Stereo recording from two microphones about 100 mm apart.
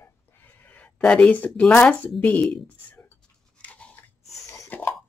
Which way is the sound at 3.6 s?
15° left (ahead or behind).